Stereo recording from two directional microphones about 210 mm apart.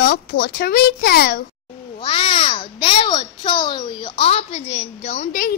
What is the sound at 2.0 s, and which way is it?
A child's voice, 25° left (ahead or behind).